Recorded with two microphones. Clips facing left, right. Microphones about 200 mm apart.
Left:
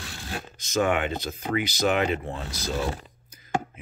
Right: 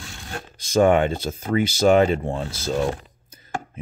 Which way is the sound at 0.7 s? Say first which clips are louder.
Right 7 dB; 30° right (ahead or behind).